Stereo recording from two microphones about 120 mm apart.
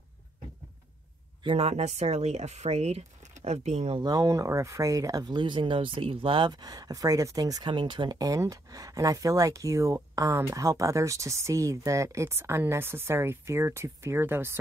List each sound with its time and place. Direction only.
1.4 s speech: 55° right (ahead or behind)
3.9 s speech: 35° right (ahead or behind)